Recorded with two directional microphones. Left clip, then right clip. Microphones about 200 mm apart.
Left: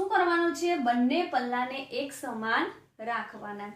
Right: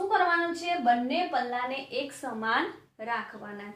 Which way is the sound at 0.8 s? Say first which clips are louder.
Right 5 dB; 10° right (ahead or behind).